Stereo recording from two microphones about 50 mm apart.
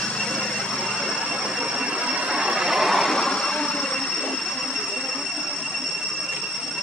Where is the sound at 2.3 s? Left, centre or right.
Centre.